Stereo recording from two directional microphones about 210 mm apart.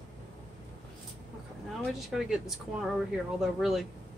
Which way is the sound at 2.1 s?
Centre (ahead or behind).